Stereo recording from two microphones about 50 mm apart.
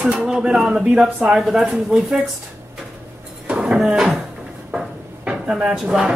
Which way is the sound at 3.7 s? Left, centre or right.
Centre.